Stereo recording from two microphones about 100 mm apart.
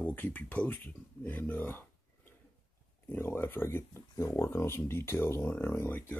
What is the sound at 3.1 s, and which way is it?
Speech, 25° left (ahead or behind).